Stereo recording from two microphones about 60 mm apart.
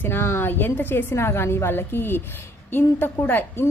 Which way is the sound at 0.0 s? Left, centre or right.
Left.